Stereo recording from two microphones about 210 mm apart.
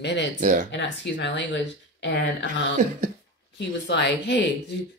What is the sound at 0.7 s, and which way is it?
Speech, 60° left (ahead or behind).